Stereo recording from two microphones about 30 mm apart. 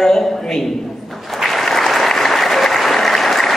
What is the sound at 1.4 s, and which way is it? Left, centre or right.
Applause, centre.